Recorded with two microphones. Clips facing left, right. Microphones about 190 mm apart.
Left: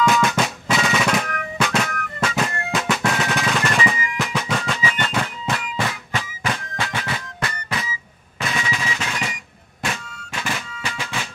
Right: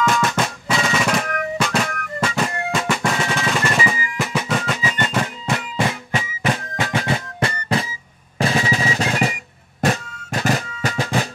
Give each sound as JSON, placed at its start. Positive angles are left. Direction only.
{"t": 0.0, "sound": "drum", "side_deg": 0}
{"t": 3.9, "sound": "music", "side_deg": -5}
{"t": 5.0, "sound": "music", "side_deg": -15}
{"t": 5.6, "sound": "music", "side_deg": -30}